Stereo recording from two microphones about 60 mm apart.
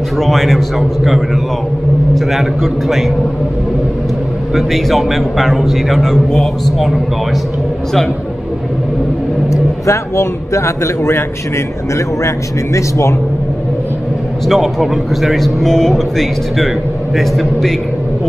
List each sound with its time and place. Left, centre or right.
0.2 s speech: centre
4.6 s speech: centre
9.5 s speech: left
12.7 s speech: left
14.5 s speech: centre